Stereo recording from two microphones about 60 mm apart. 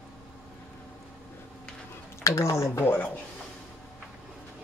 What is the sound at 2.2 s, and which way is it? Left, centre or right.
Speech, left.